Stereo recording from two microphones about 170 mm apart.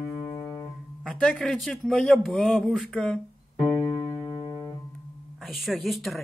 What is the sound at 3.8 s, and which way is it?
Keyboard, 25° left (ahead or behind).